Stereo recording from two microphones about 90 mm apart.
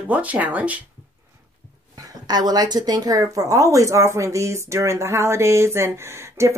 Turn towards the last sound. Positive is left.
turn(degrees=-30)  # may be behind; listen again after turning